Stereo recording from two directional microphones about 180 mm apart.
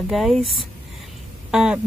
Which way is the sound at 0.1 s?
Centre (ahead or behind).